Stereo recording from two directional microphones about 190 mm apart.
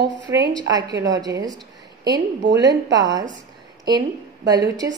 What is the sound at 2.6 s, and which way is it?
Speech, 20° right (ahead or behind).